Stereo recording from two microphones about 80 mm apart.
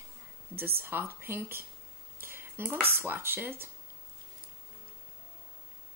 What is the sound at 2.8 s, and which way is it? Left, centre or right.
Speech, right.